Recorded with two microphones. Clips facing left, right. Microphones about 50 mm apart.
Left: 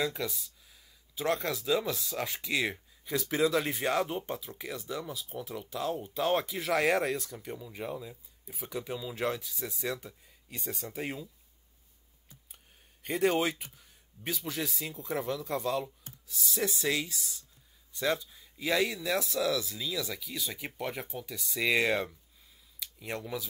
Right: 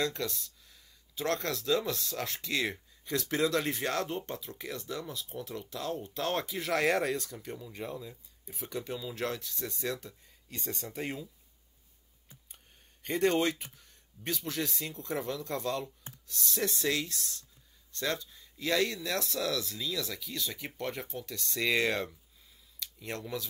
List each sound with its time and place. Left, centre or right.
0.0 s speech: centre
13.0 s speech: centre